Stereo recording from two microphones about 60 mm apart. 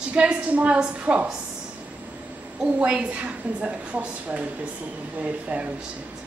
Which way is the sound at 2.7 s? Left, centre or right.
Right.